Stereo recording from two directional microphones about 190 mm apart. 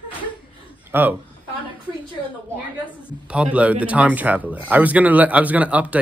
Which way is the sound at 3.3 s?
5° right (ahead or behind).